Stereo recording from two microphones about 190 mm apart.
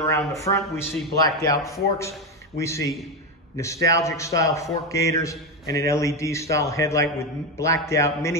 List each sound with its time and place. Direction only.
0.0 s a man's voice: 15° left (ahead or behind)